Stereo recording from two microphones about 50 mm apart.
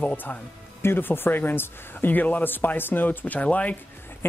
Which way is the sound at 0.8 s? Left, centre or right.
Left.